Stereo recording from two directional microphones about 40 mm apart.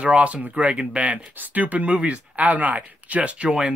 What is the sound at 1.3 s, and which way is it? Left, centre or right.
Speech, right.